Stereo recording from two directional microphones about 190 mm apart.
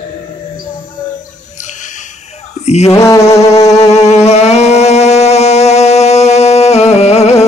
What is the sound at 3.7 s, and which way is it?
Music, 35° left (ahead or behind).